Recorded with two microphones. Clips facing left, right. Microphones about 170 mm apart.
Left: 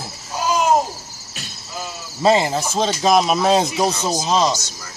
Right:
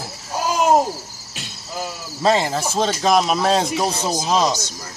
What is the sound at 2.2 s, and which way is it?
Speech, 5° left (ahead or behind).